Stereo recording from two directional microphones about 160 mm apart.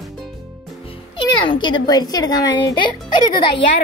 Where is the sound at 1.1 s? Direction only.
30° left (ahead or behind).